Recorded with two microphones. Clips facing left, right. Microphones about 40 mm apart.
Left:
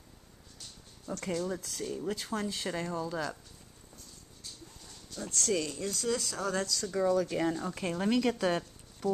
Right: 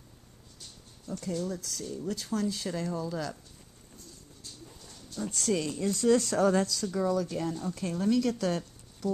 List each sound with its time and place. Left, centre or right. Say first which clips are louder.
1.4 s speech: even; left
4.6 s dog: right 2 dB; centre
5.3 s speech: right 1 dB; centre
6.1 s speech: right 8 dB; right
6.6 s speech: right 3 dB; centre
6.9 s speech: left 4 dB; centre
7.2 s speech: left 2 dB; left